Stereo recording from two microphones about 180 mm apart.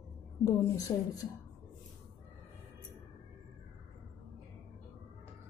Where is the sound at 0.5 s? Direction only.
20° left (ahead or behind).